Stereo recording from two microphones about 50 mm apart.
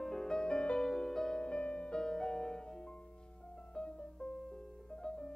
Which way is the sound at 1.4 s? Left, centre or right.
Left.